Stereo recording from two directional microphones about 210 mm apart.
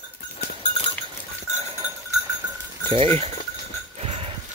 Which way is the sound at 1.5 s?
30° right (ahead or behind).